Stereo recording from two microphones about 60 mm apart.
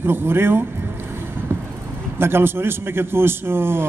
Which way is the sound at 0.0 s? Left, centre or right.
Right.